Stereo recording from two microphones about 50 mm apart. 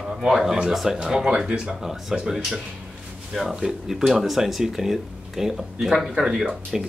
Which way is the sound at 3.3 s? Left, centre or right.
Centre.